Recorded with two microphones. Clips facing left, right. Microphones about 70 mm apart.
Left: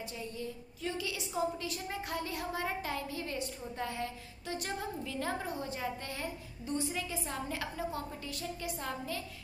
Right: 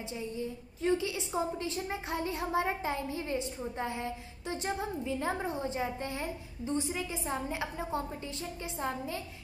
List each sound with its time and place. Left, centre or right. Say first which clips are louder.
0.8 s a woman's voice: right 7 dB; right